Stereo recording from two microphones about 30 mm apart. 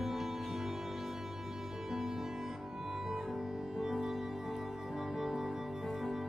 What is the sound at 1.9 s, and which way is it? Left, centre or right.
Music, centre.